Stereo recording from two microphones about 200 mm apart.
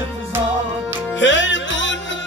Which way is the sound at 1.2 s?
65° left (ahead or behind).